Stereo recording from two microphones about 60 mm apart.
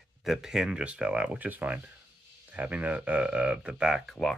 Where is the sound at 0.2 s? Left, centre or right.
Centre.